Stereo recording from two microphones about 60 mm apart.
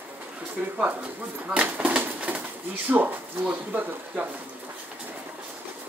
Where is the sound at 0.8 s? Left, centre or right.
Right.